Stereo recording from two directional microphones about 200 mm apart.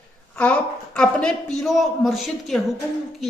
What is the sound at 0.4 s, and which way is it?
A woman's voice, 5° left (ahead or behind).